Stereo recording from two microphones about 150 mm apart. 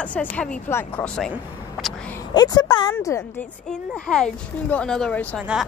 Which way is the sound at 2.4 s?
30° left (ahead or behind).